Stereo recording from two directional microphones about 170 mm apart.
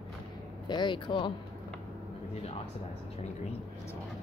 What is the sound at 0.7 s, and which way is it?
Speech, 25° left (ahead or behind).